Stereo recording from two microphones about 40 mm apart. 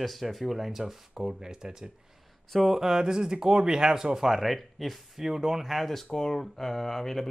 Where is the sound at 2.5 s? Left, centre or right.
Centre.